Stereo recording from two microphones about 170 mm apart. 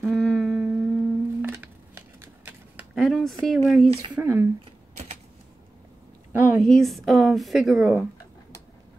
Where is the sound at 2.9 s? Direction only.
Centre (ahead or behind).